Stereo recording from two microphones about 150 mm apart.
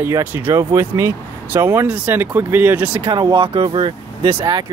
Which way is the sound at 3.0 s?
30° right (ahead or behind).